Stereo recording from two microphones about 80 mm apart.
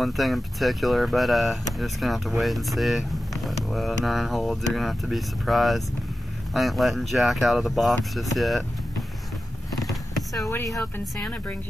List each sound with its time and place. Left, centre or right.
0.0 s speech: centre
10.7 s speech: centre